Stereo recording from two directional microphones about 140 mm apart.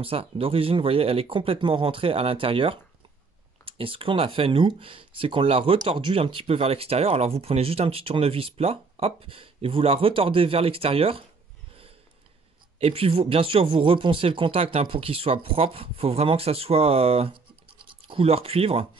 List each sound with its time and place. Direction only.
0.0 s speech: 40° right (ahead or behind)
12.7 s speech: 45° right (ahead or behind)